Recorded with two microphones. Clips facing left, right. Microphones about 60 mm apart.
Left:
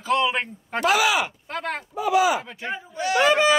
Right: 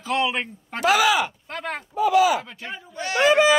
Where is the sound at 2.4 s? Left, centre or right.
Centre.